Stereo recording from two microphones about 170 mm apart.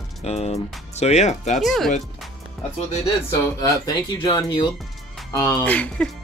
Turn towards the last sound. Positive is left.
turn(degrees=10)  # may be behind; listen again after turning